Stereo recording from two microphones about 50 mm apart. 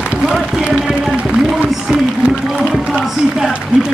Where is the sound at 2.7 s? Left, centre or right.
Centre.